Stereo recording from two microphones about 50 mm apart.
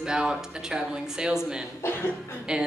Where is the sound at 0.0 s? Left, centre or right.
Centre.